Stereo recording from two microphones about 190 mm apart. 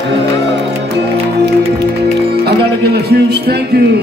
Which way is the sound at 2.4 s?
55° right (ahead or behind).